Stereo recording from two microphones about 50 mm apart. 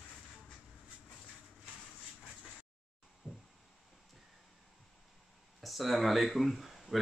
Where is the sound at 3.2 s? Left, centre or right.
Left.